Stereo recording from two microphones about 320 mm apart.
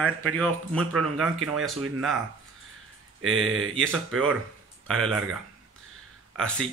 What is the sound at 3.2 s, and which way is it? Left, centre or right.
Speech, right.